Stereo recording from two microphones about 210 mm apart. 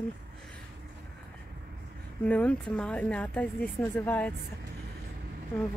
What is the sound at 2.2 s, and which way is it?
Speech, 5° left (ahead or behind).